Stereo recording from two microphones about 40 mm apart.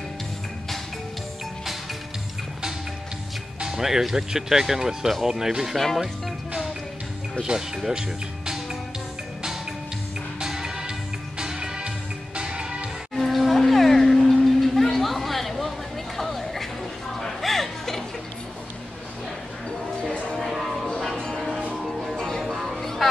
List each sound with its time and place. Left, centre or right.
3.6 s speech: centre
7.4 s speech: centre
10.4 s music: centre
13.1 s a sound: centre
17.2 s chuckle: centre
20.0 s music: left
20.5 s music: centre